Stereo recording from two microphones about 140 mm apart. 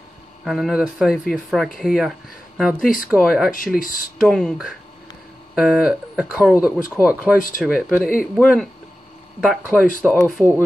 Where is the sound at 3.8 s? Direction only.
80° left.